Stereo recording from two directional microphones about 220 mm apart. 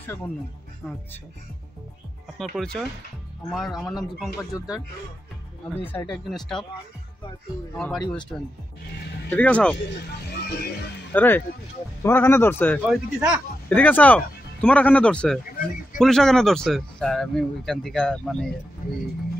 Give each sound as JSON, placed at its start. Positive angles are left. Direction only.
{"t": 0.8, "sound": "speech", "side_deg": 5}
{"t": 2.3, "sound": "speech", "side_deg": 0}
{"t": 4.5, "sound": "speech", "side_deg": 15}
{"t": 5.8, "sound": "speech", "side_deg": 10}
{"t": 7.7, "sound": "speech", "side_deg": 5}
{"t": 9.3, "sound": "speech", "side_deg": 5}
{"t": 11.1, "sound": "speech", "side_deg": 10}
{"t": 13.2, "sound": "speech", "side_deg": -5}
{"t": 13.7, "sound": "speech", "side_deg": 10}